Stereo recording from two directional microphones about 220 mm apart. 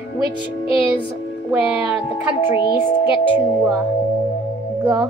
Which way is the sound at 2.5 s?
20° left (ahead or behind).